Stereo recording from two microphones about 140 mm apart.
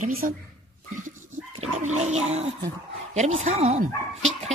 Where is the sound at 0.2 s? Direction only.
75° right (ahead or behind).